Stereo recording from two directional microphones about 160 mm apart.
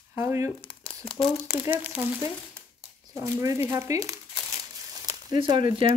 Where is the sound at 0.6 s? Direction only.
35° left (ahead or behind).